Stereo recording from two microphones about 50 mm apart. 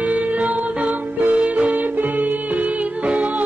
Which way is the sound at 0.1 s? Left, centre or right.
Right.